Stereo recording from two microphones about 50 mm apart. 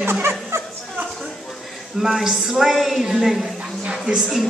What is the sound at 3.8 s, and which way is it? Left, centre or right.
Speech, centre.